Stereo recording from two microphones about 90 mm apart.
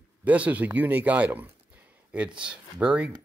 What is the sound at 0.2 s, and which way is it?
Speech, 15° right (ahead or behind).